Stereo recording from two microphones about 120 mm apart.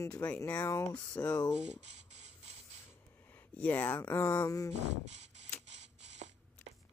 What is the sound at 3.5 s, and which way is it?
Speech, 15° left (ahead or behind).